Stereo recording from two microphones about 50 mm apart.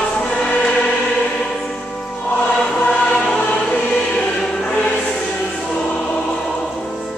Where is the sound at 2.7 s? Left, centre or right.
Centre.